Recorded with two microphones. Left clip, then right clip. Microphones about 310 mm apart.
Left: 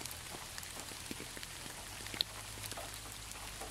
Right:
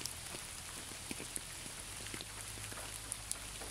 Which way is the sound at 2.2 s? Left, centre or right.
Left.